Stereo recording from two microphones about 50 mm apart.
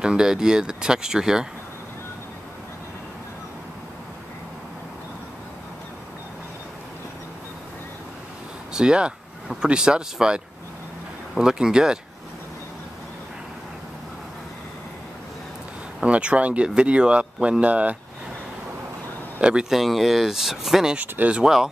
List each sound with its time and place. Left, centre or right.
0.0 s speech: centre
8.7 s speech: centre
16.1 s speech: right
19.7 s speech: centre
21.0 s speech: right